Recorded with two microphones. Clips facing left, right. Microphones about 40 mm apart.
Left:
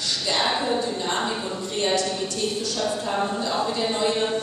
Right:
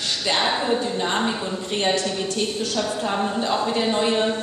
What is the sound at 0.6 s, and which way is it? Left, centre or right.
A woman's voice, right.